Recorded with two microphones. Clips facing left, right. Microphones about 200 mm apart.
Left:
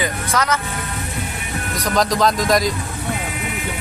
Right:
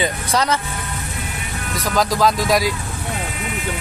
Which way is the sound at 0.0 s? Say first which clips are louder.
Right 1 dB; 30° right (ahead or behind).